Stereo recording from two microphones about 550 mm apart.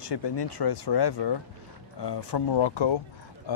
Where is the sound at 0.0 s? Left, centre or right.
Left.